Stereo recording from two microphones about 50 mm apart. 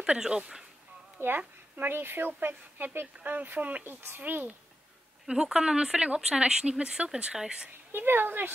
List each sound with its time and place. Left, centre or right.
0.0 s speech: centre
1.2 s speech: right
1.8 s speech: right
5.3 s speech: centre
7.9 s speech: right